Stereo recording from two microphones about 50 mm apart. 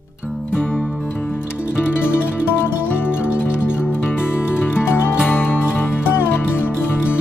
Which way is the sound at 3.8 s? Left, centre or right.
Left.